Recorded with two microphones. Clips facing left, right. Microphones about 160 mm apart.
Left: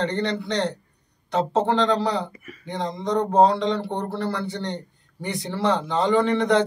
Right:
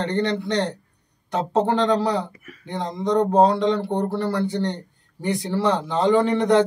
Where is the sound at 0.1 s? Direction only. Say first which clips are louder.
Right 3 dB; 15° right (ahead or behind).